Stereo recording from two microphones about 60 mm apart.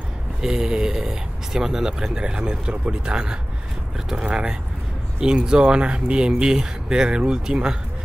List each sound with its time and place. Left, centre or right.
0.4 s speech: centre